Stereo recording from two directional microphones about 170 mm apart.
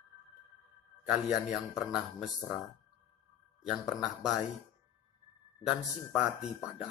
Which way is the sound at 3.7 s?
5° right (ahead or behind).